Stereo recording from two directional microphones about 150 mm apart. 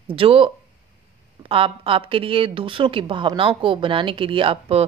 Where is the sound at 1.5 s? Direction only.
40° right (ahead or behind).